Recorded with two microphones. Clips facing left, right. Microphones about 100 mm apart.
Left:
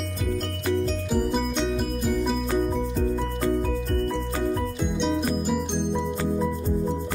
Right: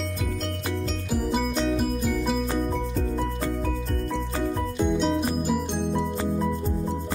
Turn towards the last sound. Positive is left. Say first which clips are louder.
# even
turn(degrees=0)  # may be behind; listen again after turning